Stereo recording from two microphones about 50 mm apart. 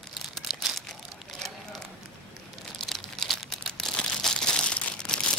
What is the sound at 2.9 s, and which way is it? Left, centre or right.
Crumpling, centre.